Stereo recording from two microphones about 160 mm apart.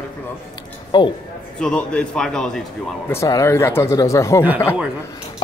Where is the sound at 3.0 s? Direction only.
20° left (ahead or behind).